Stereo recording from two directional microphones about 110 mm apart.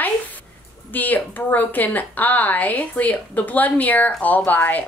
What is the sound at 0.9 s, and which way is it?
A woman's voice, 15° left (ahead or behind).